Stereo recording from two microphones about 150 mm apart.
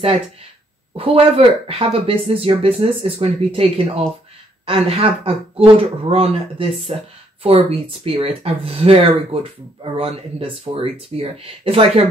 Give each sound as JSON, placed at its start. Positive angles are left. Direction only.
{"t": 0.9, "sound": "speech", "side_deg": -40}